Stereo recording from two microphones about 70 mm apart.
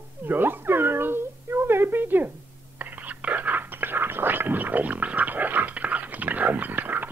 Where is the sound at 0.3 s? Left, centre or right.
Right.